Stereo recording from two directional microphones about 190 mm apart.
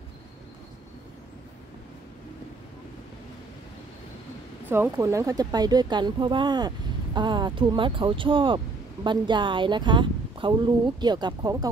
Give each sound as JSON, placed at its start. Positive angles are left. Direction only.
{"t": 4.6, "sound": "speech", "side_deg": -10}